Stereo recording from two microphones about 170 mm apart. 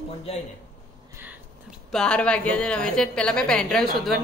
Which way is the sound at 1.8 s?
5° left (ahead or behind).